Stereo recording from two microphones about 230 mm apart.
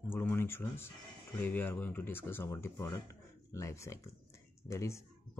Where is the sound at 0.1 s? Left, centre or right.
Centre.